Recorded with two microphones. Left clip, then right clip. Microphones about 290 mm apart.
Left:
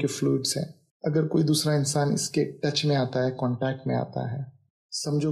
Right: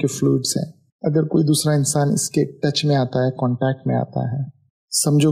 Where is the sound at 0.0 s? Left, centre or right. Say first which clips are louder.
Right 6 dB; right.